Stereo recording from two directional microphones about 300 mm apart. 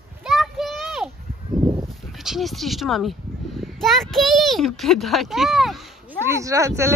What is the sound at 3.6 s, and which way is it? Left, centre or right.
A child's voice, centre.